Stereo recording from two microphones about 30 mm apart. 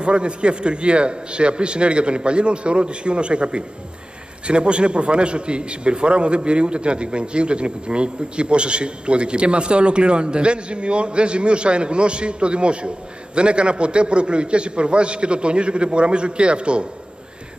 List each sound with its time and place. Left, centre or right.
0.0 s a man's voice: right